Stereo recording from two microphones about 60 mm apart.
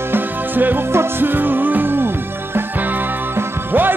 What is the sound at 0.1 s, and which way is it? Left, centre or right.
Music, right.